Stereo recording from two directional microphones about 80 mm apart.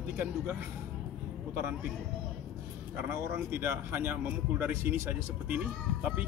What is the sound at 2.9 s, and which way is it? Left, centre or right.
Speech, right.